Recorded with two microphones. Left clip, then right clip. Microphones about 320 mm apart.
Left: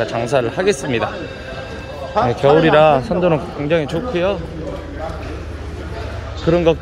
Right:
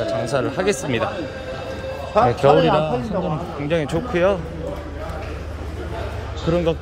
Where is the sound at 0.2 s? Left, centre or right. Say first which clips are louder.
Left 4 dB; centre.